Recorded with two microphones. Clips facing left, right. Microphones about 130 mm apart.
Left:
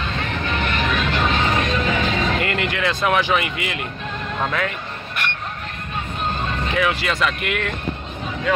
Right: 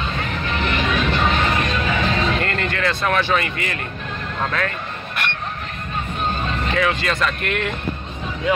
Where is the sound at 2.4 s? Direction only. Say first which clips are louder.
Even; 10° left (ahead or behind).